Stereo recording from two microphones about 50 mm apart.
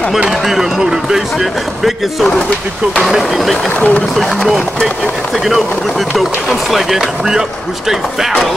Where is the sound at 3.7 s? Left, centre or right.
Left.